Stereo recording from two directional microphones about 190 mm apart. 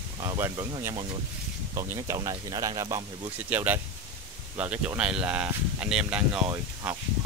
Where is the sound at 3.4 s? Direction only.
10° right (ahead or behind).